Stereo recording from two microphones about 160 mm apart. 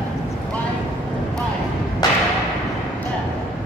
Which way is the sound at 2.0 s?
25° left (ahead or behind).